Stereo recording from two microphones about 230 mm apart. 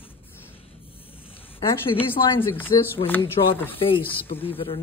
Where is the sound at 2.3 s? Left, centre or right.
Left.